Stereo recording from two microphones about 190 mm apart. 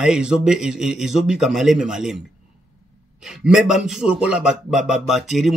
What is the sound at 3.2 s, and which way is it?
Speech, 5° right (ahead or behind).